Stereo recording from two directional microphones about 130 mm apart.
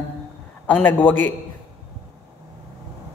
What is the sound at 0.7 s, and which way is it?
Speech, 10° left (ahead or behind).